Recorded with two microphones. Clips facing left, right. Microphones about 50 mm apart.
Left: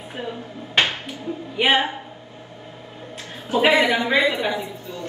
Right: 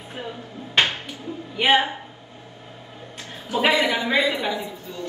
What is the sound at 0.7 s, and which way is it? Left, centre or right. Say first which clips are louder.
Music: even; left.